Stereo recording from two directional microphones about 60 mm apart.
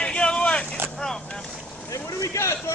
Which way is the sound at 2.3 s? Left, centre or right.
Left.